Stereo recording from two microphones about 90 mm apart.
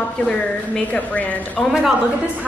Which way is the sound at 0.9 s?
15° left (ahead or behind).